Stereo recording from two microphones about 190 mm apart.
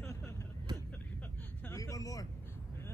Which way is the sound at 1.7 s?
15° left (ahead or behind).